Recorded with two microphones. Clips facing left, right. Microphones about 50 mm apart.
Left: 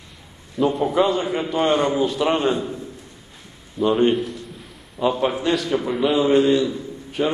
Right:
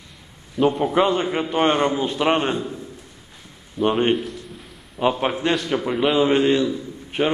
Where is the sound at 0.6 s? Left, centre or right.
Centre.